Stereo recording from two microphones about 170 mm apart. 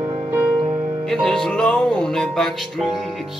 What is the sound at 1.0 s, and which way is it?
Music, centre (ahead or behind).